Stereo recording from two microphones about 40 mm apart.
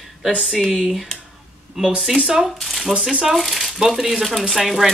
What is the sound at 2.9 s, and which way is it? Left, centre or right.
Speech, centre.